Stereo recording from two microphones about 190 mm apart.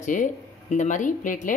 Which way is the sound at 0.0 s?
40° left (ahead or behind).